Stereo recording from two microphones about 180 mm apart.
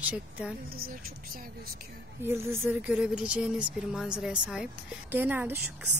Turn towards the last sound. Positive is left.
turn(degrees=-10)  # may be behind; listen again after turning